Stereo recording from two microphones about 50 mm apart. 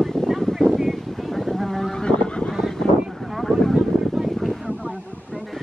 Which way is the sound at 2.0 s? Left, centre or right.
Centre.